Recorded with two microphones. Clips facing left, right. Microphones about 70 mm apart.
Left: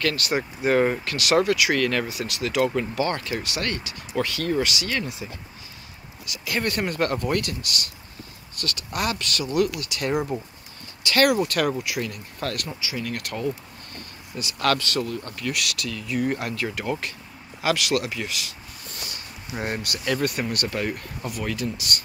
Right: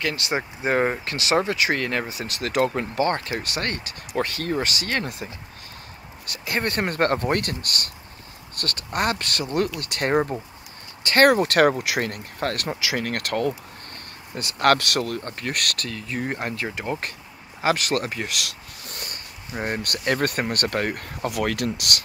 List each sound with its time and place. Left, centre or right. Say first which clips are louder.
0.0 s speech: left 1 dB; right
6.4 s speech: right 1 dB; right
11.4 s speech: right 6 dB; right
17.6 s speech: right 1 dB; right
18.3 s a sound: right 2 dB; right
19.6 s speech: right 2 dB; right
19.9 s speech: right 2 dB; right
21.3 s speech: right 4 dB; right